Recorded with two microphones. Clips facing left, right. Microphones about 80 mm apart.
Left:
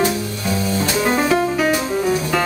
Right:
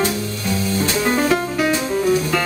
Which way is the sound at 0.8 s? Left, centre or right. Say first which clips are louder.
Even; centre.